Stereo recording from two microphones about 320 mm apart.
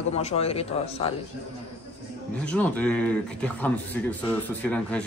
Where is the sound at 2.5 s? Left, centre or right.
Centre.